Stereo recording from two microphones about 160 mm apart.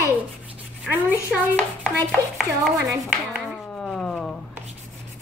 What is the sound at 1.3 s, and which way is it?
Hands, centre (ahead or behind).